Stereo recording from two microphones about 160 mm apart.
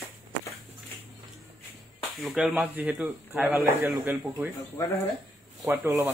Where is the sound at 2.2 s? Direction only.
5° right (ahead or behind).